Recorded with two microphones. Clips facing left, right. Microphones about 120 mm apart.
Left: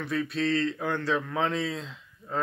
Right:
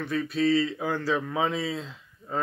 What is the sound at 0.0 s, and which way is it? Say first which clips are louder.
Speech: right 3 dB; centre (ahead or behind).